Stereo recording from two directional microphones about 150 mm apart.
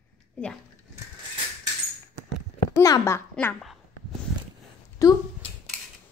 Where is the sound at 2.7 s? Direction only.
20° left (ahead or behind).